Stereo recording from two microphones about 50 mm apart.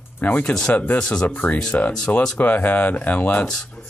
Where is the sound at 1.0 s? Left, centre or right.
Centre.